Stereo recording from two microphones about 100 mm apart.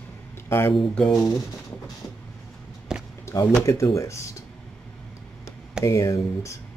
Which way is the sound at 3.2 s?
25° left (ahead or behind).